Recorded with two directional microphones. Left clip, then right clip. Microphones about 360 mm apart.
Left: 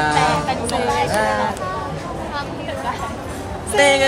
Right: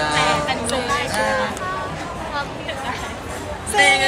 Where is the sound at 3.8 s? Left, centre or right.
Centre.